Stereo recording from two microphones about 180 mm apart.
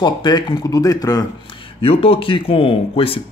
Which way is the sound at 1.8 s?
30° left (ahead or behind).